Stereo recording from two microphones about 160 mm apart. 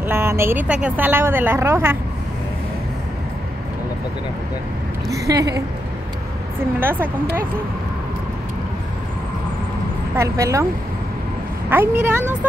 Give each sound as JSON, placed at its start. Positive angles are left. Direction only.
{"t": 0.0, "sound": "a woman's voice", "side_deg": -15}
{"t": 5.1, "sound": "a woman's voice", "side_deg": -20}
{"t": 6.8, "sound": "a woman's voice", "side_deg": -15}
{"t": 10.1, "sound": "speech", "side_deg": -20}
{"t": 11.7, "sound": "a woman's voice", "side_deg": -10}